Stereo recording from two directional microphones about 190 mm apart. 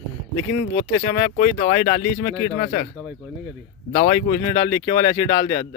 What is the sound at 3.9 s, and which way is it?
Speech, 25° left (ahead or behind).